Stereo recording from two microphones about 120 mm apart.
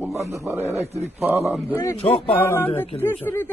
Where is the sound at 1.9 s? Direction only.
50° left (ahead or behind).